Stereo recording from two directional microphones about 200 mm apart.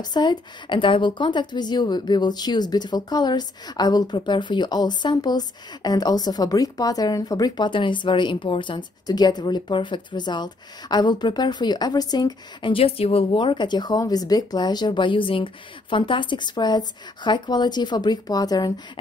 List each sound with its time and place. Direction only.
0.0 s a woman's voice: 20° left (ahead or behind)